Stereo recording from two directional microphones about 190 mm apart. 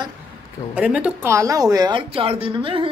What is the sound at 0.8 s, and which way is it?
Speech, 5° right (ahead or behind).